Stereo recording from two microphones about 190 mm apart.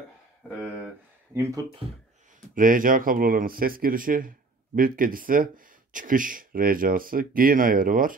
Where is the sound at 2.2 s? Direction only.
45° right (ahead or behind).